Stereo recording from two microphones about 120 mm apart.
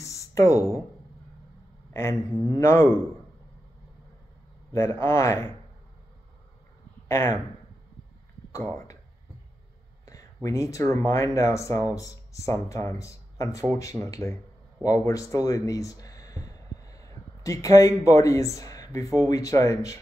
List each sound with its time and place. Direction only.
0.0 s a sound: 25° left (ahead or behind)
2.0 s speech: 25° left (ahead or behind)
4.7 s speech: 20° left (ahead or behind)
7.1 s speech: 20° left (ahead or behind)
8.5 s speech: 25° left (ahead or behind)
10.0 s a sound: 25° left (ahead or behind)
11.1 s speech: 25° left (ahead or behind)